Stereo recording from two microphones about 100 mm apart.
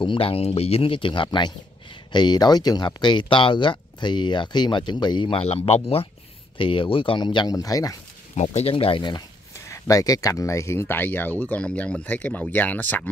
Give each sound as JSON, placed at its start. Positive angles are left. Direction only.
{"t": 0.0, "sound": "speech", "side_deg": 60}
{"t": 5.4, "sound": "speech", "side_deg": 90}
{"t": 6.6, "sound": "speech", "side_deg": 60}
{"t": 7.5, "sound": "speech", "side_deg": 35}
{"t": 8.5, "sound": "speech", "side_deg": 75}
{"t": 9.7, "sound": "speech", "side_deg": 35}